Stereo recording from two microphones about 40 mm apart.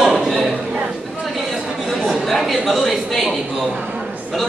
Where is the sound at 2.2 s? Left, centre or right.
Centre.